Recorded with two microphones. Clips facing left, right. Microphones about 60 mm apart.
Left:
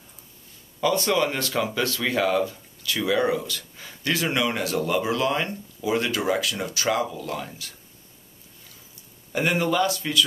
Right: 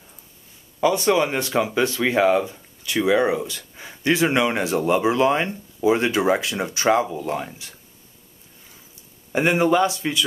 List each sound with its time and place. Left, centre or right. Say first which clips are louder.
0.7 s speech: right 4 dB; centre
9.3 s speech: right 5 dB; right